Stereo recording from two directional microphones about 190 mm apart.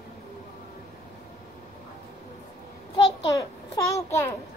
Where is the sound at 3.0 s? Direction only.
15° left (ahead or behind).